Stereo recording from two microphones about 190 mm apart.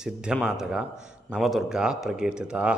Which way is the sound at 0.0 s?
5° right (ahead or behind).